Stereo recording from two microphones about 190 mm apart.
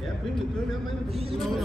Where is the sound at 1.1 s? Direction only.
30° right (ahead or behind).